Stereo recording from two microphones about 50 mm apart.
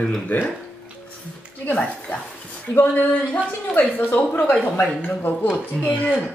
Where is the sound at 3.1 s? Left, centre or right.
Left.